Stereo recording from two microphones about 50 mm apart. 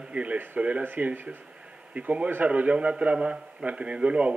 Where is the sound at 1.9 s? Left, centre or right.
Right.